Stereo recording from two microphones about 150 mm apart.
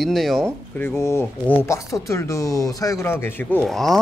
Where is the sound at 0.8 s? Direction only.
15° left (ahead or behind).